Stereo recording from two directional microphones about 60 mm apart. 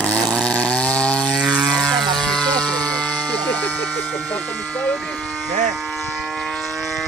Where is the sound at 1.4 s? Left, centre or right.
Centre.